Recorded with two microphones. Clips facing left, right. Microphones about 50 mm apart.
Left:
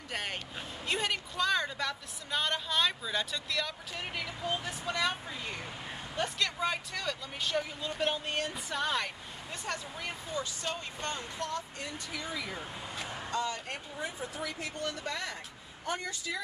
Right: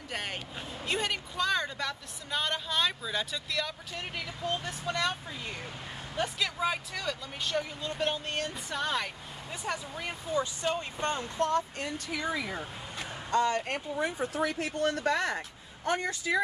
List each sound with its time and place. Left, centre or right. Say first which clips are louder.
0.1 s speech: even; centre; by 11.2 s right
11.3 s speech: right 8 dB; right
12.4 s speech: right 4 dB; centre
12.9 s vehicle: even; centre
13.3 s speech: right 8 dB; right
16.0 s speech: right 7 dB; right